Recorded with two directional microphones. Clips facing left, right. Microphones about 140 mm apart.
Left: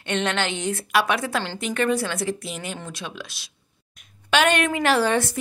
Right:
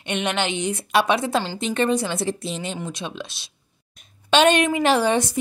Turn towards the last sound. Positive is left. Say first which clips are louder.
# right 1 dB
turn(degrees=-15)  # may be behind; listen again after turning